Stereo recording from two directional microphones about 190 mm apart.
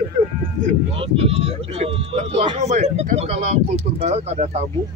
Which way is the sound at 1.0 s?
30° right (ahead or behind).